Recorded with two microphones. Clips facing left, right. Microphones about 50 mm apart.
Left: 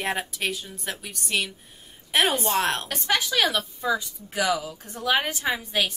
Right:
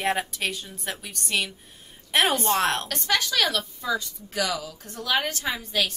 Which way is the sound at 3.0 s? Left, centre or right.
Centre.